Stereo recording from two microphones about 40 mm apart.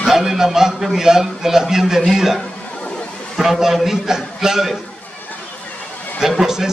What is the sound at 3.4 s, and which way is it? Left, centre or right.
A man's voice, centre.